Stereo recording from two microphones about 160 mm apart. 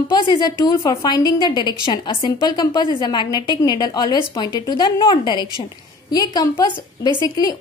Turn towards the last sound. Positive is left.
turn(degrees=25)  # may be behind; listen again after turning